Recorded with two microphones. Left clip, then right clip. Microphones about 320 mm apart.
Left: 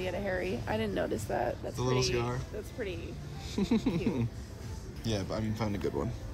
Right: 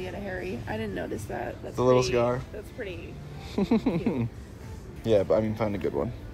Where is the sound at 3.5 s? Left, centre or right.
Centre.